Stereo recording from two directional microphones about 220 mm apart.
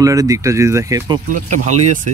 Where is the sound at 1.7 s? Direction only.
35° right (ahead or behind).